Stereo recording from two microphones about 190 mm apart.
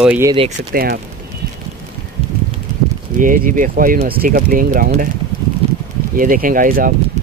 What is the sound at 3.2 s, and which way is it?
Speech, 45° right (ahead or behind).